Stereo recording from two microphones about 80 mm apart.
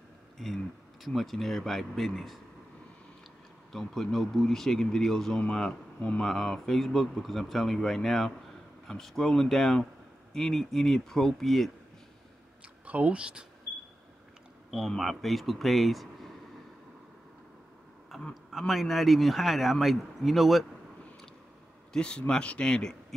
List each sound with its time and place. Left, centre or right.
0.4 s speech: centre
3.7 s speech: centre
12.8 s speech: centre
14.7 s speech: centre
18.3 s speech: centre
21.9 s speech: centre